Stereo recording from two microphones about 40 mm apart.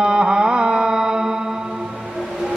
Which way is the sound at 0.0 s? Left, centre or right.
Right.